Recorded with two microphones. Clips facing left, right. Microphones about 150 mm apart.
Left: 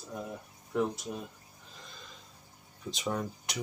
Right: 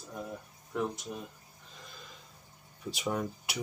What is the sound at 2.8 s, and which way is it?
Speech, 10° right (ahead or behind).